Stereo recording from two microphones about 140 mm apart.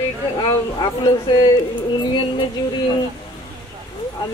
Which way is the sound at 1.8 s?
35° left (ahead or behind).